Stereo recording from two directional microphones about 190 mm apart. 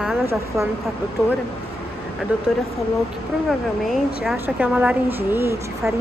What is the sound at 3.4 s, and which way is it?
A woman's voice, centre (ahead or behind).